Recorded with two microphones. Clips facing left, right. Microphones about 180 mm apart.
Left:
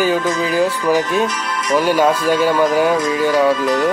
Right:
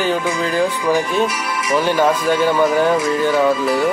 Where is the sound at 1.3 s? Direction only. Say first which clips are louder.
Even; 10° right (ahead or behind).